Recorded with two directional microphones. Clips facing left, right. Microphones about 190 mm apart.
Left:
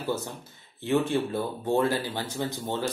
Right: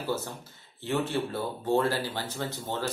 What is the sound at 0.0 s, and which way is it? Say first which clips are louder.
Speech: left 1 dB; 15° left (ahead or behind).